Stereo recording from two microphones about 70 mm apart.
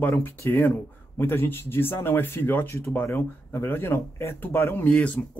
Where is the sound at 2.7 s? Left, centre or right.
Left.